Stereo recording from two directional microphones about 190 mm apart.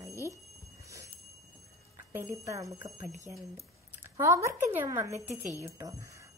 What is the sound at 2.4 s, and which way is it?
Speech, 15° right (ahead or behind).